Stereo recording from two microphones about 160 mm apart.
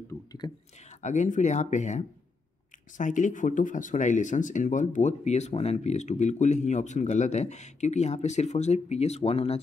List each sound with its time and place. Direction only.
0.1 s speech: 20° left (ahead or behind)
1.0 s speech: 50° left (ahead or behind)